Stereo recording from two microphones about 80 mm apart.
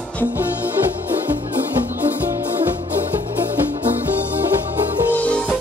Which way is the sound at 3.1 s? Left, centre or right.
Right.